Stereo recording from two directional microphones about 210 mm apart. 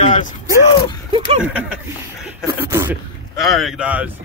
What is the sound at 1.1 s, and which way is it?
Speech, 25° right (ahead or behind).